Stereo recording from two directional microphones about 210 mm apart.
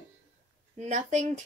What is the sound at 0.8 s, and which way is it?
Speech, 35° right (ahead or behind).